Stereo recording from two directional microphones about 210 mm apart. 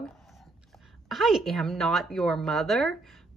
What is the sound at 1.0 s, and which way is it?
A woman's voice, centre (ahead or behind).